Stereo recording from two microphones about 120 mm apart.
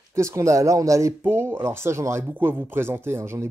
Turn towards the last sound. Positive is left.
turn(degrees=-20)  # may be behind; listen again after turning